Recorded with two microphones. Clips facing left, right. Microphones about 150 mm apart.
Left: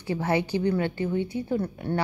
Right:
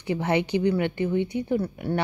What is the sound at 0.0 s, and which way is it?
A woman's voice, 20° right (ahead or behind).